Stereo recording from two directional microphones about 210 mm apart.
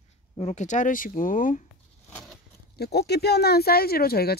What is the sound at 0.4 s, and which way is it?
Speech, 35° left (ahead or behind).